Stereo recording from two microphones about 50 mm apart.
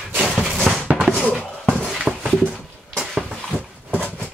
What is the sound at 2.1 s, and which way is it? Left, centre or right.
Dog, centre.